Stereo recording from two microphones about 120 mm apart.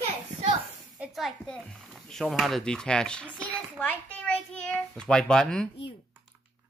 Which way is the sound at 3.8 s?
15° left (ahead or behind).